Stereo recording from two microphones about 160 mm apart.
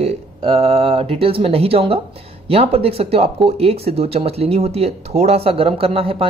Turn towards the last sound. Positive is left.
turn(degrees=-35)  # may be behind; listen again after turning